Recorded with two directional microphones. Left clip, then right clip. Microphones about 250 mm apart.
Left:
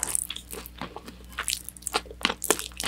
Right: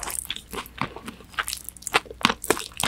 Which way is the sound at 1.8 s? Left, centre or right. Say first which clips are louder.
Right 6 dB; right.